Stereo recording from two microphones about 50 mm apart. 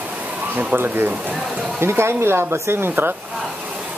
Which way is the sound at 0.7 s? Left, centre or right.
Right.